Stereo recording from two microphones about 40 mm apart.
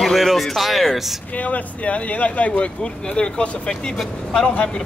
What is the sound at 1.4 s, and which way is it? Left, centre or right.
Speech, left.